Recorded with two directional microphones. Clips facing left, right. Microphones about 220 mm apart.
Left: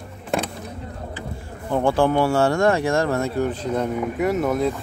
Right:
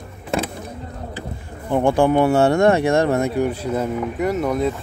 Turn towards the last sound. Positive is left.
turn(degrees=0)  # may be behind; listen again after turning